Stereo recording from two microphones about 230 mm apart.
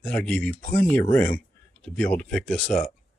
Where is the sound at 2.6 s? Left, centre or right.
Left.